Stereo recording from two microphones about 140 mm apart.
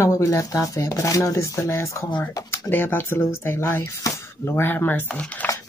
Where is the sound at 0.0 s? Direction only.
20° left (ahead or behind).